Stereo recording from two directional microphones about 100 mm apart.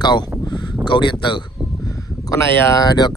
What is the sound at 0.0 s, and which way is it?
Speech, 45° left (ahead or behind).